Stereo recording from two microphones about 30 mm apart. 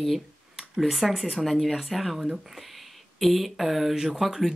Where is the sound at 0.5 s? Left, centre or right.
Centre.